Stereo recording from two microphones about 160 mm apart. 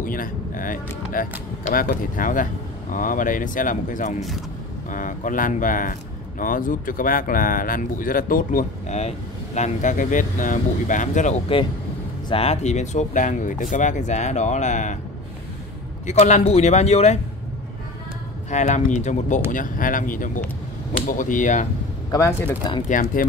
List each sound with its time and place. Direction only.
0.0 s speech: 60° left (ahead or behind)
16.1 s speech: 45° left (ahead or behind)
18.5 s speech: 50° left (ahead or behind)
22.1 s speech: 15° left (ahead or behind)
22.8 s speech: 55° left (ahead or behind)